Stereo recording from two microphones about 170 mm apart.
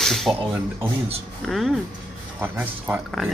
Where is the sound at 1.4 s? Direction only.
Centre (ahead or behind).